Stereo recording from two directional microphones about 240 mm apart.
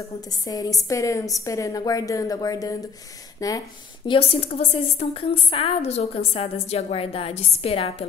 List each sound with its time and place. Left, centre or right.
0.3 s a woman's voice: centre
4.1 s a woman's voice: left